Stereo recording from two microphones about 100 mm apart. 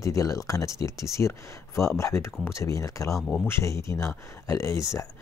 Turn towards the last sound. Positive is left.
turn(degrees=30)  # may be behind; listen again after turning